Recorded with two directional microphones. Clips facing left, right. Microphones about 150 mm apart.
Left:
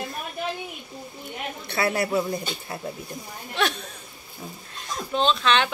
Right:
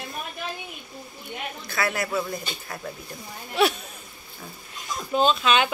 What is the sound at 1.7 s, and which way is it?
Speech, 30° left (ahead or behind).